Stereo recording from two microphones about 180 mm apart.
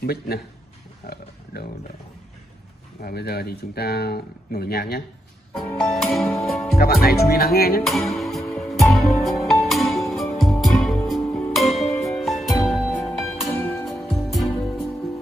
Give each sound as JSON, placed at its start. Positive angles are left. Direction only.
{"t": 0.0, "sound": "speech", "side_deg": 60}
{"t": 1.0, "sound": "pig", "side_deg": 60}
{"t": 3.0, "sound": "speech", "side_deg": 60}
{"t": 5.8, "sound": "speech", "side_deg": 0}
{"t": 6.8, "sound": "speech", "side_deg": 60}
{"t": 7.8, "sound": "music", "side_deg": 0}
{"t": 11.2, "sound": "music", "side_deg": 10}
{"t": 11.5, "sound": "music", "side_deg": 0}